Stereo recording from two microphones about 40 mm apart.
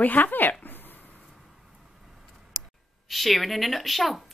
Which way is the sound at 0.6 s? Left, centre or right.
Left.